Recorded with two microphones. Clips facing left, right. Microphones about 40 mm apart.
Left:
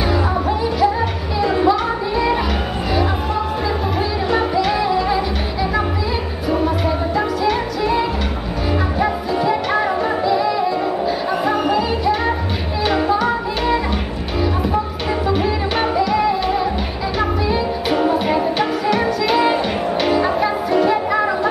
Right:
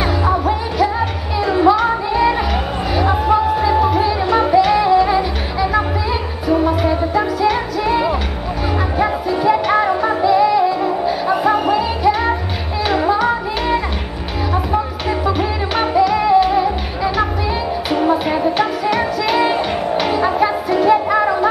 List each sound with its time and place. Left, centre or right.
1.4 s music: centre
6.5 s music: centre
9.0 s music: centre
16.0 s music: centre
17.9 s music: centre